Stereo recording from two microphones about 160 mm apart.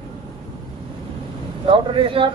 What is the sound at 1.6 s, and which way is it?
Speech, 35° right (ahead or behind).